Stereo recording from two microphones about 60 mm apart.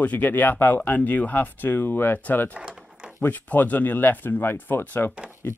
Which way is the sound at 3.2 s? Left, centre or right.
Left.